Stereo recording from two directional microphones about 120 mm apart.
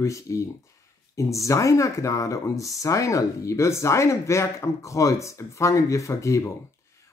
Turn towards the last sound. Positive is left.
turn(degrees=25)  # may be behind; listen again after turning